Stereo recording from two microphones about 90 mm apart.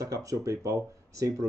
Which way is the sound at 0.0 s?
40° right (ahead or behind).